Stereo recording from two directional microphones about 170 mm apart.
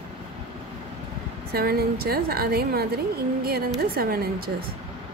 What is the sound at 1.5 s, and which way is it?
A woman's voice, 65° right (ahead or behind).